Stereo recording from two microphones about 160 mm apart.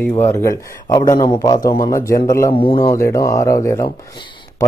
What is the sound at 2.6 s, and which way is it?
Speech, 30° left (ahead or behind).